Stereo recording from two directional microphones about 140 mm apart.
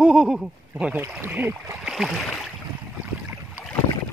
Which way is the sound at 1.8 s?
Centre (ahead or behind).